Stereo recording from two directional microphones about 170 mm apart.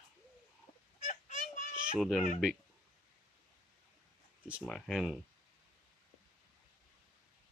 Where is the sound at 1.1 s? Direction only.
45° left (ahead or behind).